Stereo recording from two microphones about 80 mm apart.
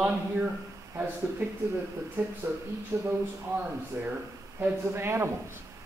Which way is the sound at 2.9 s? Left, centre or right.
Right.